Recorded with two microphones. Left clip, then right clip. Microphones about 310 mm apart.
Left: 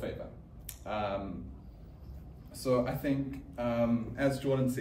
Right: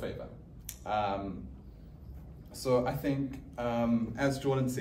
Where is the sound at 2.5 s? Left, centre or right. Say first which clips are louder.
Right 1 dB; centre.